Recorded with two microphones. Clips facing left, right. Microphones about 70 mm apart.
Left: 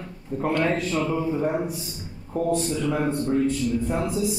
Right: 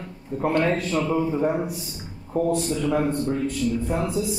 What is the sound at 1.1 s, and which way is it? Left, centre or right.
Speech, right.